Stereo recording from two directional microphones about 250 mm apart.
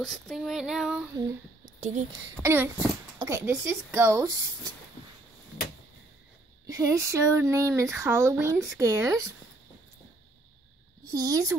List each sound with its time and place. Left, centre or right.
0.0 s female singing: centre
1.8 s speech: right
2.4 s speech: centre
6.7 s speech: centre
11.1 s speech: centre